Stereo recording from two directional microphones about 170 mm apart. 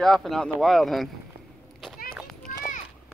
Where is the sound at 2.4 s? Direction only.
50° left (ahead or behind).